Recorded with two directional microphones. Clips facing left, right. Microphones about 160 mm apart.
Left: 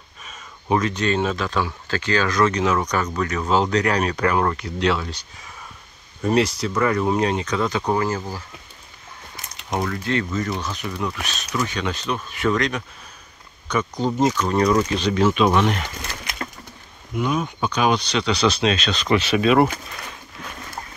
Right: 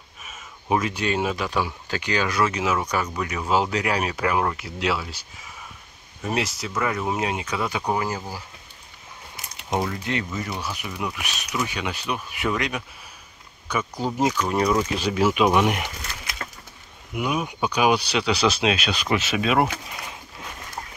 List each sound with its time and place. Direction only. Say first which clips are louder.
0.2 s speech: left 1 dB; 5° right (ahead or behind)
6.2 s speech: left 7 dB; 5° right (ahead or behind)
9.8 s speech: left 3 dB; 20° right (ahead or behind)
17.1 s speech: left 3 dB; 10° right (ahead or behind)